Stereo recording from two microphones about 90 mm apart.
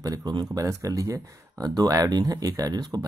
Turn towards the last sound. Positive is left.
turn(degrees=-45)  # may be behind; listen again after turning